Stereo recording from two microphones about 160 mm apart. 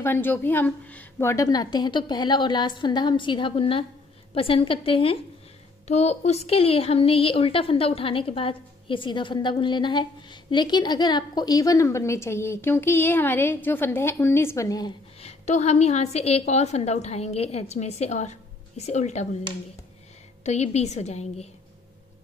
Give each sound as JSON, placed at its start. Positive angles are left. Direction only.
{"t": 0.0, "sound": "a woman's voice", "side_deg": 10}
{"t": 15.1, "sound": "a woman's voice", "side_deg": 45}
{"t": 20.4, "sound": "a woman's voice", "side_deg": 45}